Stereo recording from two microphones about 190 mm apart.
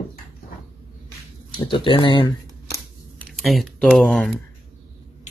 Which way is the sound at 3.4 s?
Centre (ahead or behind).